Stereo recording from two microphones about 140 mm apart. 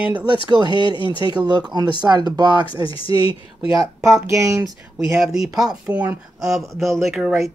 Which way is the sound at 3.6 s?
25° right (ahead or behind).